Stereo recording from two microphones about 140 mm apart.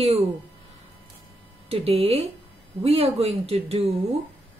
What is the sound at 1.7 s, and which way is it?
A woman's voice, 45° right (ahead or behind).